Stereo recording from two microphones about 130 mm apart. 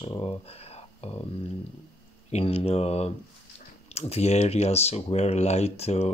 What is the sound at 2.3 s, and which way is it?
Speech, 50° left (ahead or behind).